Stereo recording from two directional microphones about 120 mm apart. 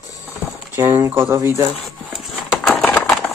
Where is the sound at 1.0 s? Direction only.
25° right (ahead or behind).